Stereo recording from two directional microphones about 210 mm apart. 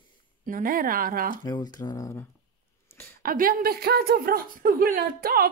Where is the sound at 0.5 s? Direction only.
40° right (ahead or behind).